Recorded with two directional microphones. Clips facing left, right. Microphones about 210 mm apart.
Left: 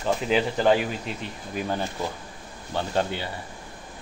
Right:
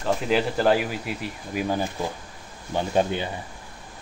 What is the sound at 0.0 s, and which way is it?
Speech, centre (ahead or behind).